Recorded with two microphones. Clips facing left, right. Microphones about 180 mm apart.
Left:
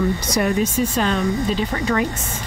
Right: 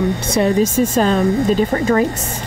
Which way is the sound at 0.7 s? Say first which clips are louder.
Right 5 dB; 45° right (ahead or behind).